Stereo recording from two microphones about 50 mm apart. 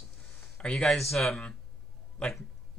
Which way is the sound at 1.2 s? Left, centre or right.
Centre.